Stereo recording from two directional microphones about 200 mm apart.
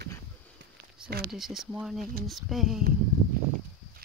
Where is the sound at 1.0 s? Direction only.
5° right (ahead or behind).